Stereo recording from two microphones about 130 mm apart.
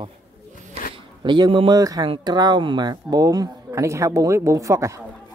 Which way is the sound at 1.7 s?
30° right (ahead or behind).